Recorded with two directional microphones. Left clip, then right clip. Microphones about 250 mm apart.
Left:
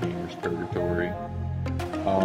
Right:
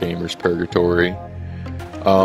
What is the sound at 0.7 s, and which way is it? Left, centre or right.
Speech, right.